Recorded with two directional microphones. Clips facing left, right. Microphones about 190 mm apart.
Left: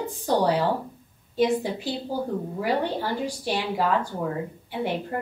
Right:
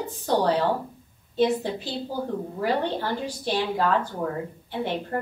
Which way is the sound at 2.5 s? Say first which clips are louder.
Even; 10° left (ahead or behind).